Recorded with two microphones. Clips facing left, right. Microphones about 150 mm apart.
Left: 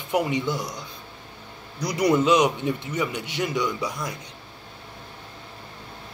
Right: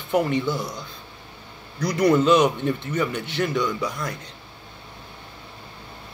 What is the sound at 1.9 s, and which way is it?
A man's voice, 15° left (ahead or behind).